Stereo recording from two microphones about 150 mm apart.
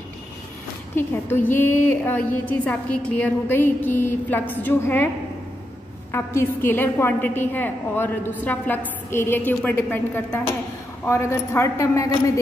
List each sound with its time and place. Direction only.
0.9 s a woman's voice: 15° left (ahead or behind)
6.1 s a woman's voice: 15° left (ahead or behind)